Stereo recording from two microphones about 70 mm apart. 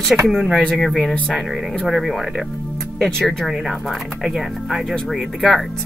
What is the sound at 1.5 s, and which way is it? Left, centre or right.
Speech, centre.